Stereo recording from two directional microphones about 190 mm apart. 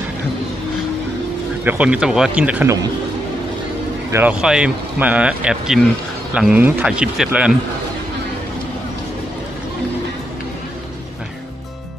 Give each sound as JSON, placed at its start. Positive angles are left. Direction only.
{"t": 1.6, "sound": "speech", "side_deg": -10}
{"t": 4.1, "sound": "speech", "side_deg": -10}